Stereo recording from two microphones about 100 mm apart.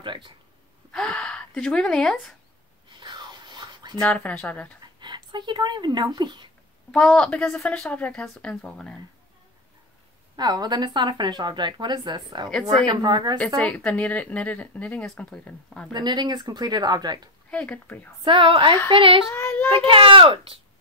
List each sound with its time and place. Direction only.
0.0 s a sound: 55° right (ahead or behind)
0.9 s speech: 10° left (ahead or behind)
2.9 s whispering: 50° right (ahead or behind)
4.0 s a woman's voice: 15° left (ahead or behind)
5.0 s speech: 50° right (ahead or behind)
6.9 s a woman's voice: 5° left (ahead or behind)
10.3 s speech: 45° right (ahead or behind)
13.6 s a woman's voice: 10° left (ahead or behind)
15.9 s speech: 45° right (ahead or behind)
17.5 s a woman's voice: 15° left (ahead or behind)
18.2 s speech: 55° right (ahead or behind)
19.3 s a child's voice: 20° left (ahead or behind)
19.7 s speech: 60° right (ahead or behind)